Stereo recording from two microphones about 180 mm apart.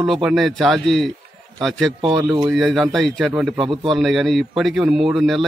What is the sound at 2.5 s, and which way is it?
A man's voice, centre (ahead or behind).